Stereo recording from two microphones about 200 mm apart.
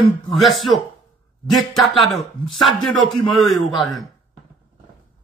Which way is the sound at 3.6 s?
25° left (ahead or behind).